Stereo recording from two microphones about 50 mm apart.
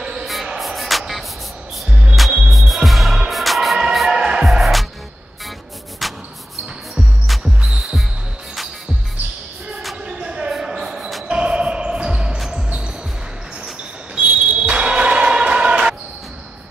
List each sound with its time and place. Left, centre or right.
0.0 s music: centre
0.6 s music: centre
1.9 s music: centre
2.4 s music: centre
4.2 s music: centre
4.5 s music: centre
7.0 s music: centre
10.0 s a sound: right
10.5 s basketball bounce: centre
11.2 s music: right
14.1 s basketball bounce: right